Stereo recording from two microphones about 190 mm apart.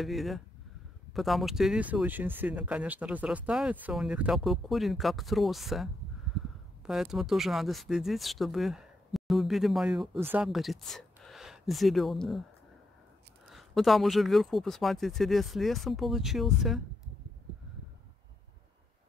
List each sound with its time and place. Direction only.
0.0 s speech: centre (ahead or behind)
6.9 s speech: centre (ahead or behind)
13.5 s speech: centre (ahead or behind)